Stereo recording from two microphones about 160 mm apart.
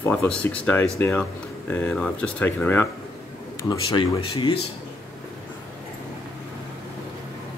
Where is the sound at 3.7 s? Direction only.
30° left (ahead or behind).